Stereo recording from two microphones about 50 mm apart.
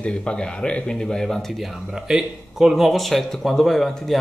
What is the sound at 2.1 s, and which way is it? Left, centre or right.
Speech, centre.